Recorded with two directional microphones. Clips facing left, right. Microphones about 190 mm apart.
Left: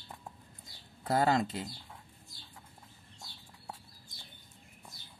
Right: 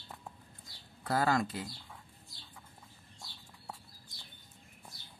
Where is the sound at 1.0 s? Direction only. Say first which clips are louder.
Left 2 dB; 25° left (ahead or behind).